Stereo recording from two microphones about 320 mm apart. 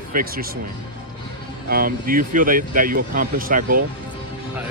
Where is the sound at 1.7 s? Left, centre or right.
Right.